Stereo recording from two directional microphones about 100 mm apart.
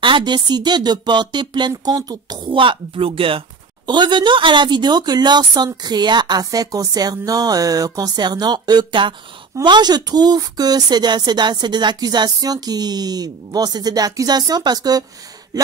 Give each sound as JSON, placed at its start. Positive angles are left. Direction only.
{"t": 0.0, "sound": "speech", "side_deg": -50}
{"t": 2.5, "sound": "speech", "side_deg": -60}
{"t": 3.8, "sound": "speech", "side_deg": -50}
{"t": 15.5, "sound": "a sound", "side_deg": -40}